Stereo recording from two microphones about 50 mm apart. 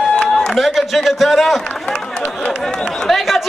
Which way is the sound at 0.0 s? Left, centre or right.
Centre.